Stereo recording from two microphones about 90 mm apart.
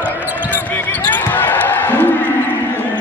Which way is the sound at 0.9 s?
20° left (ahead or behind).